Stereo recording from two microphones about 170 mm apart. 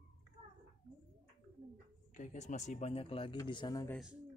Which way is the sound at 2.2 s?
45° left (ahead or behind).